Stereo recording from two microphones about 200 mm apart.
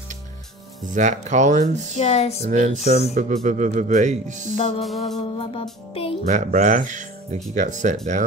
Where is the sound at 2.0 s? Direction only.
35° left (ahead or behind).